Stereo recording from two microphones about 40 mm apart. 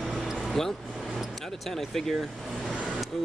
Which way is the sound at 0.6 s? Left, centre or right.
Centre.